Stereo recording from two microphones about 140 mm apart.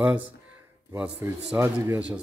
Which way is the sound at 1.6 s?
15° right (ahead or behind).